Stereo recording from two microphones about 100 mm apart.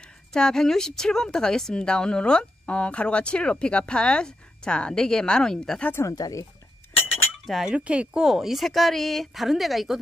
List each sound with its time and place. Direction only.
0.3 s speech: 5° left (ahead or behind)
6.0 s speech: 35° left (ahead or behind)
7.4 s speech: 5° right (ahead or behind)